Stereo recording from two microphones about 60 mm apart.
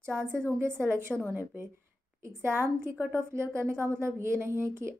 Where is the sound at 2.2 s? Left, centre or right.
Right.